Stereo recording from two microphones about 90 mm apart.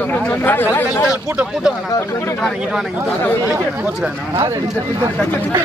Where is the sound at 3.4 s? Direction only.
20° right (ahead or behind).